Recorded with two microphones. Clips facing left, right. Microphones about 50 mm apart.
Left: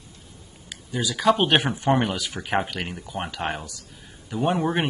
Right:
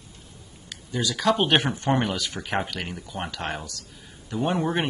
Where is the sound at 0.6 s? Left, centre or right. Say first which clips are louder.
Even; centre.